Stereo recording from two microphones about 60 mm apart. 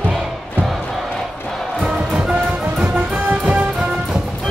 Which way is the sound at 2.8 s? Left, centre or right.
Right.